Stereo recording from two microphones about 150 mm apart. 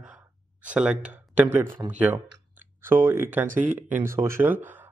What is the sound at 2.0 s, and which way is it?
Speech, 10° right (ahead or behind).